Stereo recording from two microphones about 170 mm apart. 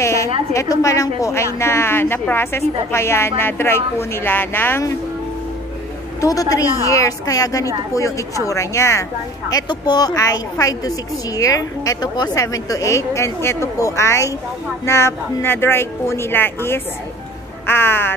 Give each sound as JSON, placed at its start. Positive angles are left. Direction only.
{"t": 0.0, "sound": "a sound", "side_deg": 15}
{"t": 0.5, "sound": "a woman's voice", "side_deg": 20}
{"t": 6.2, "sound": "a woman's voice", "side_deg": 20}